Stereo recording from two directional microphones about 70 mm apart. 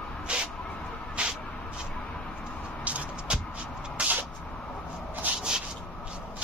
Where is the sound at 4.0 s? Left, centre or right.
Centre.